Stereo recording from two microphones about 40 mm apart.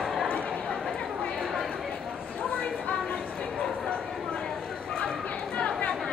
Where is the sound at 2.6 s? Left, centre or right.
Left.